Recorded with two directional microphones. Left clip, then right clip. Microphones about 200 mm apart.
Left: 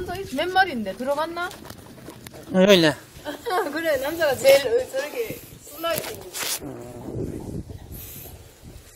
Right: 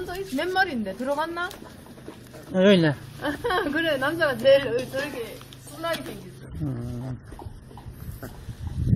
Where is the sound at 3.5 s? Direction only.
35° right (ahead or behind).